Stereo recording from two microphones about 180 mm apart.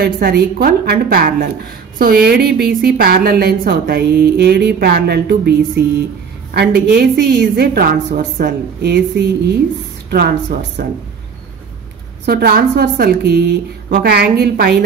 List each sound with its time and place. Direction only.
0.0 s a woman's voice: 60° right (ahead or behind)
12.3 s a woman's voice: 60° right (ahead or behind)